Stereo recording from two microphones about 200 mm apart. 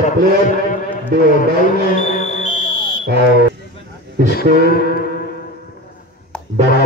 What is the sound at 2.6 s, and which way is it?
Smoke detector, 45° right (ahead or behind).